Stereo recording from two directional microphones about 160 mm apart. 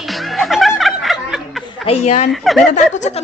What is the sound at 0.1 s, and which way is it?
Music, centre (ahead or behind).